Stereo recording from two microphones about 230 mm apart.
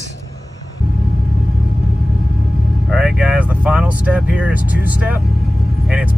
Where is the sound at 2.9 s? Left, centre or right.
Centre.